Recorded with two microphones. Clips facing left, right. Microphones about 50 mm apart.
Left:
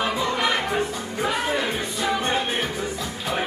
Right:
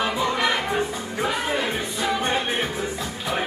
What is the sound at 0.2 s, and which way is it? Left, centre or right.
Music, right.